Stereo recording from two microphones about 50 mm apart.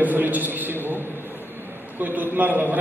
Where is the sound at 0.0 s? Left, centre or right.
Right.